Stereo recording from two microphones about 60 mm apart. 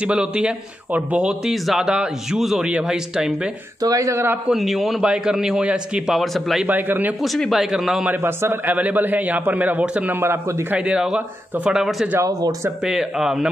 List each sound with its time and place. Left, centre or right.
0.0 s a man's voice: centre
1.4 s a man's voice: centre
3.8 s a man's voice: right
4.5 s a man's voice: centre
6.1 s a man's voice: centre
6.7 s a man's voice: right
7.2 s a man's voice: centre
8.2 s a man's voice: right
8.7 s a man's voice: right
11.7 s a man's voice: centre
12.2 s speech: right
12.8 s a man's voice: centre